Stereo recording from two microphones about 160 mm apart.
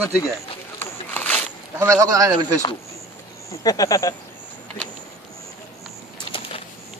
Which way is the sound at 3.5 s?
25° left (ahead or behind).